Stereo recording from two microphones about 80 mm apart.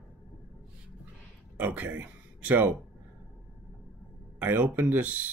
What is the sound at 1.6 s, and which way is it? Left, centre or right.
Speech, right.